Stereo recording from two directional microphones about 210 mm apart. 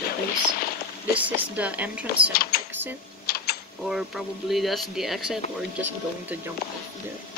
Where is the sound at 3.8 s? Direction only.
Centre (ahead or behind).